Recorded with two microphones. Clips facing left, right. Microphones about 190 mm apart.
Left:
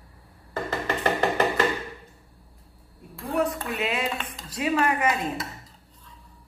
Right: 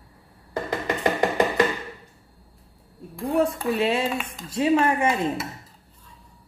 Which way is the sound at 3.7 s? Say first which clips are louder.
Right 5 dB; 30° right (ahead or behind).